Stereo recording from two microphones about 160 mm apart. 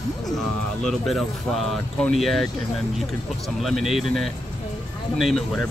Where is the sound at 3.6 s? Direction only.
Centre (ahead or behind).